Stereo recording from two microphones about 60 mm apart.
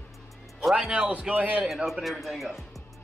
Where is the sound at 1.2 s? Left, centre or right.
Right.